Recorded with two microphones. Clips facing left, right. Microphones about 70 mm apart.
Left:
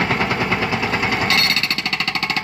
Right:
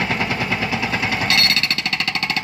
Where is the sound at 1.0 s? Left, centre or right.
Left.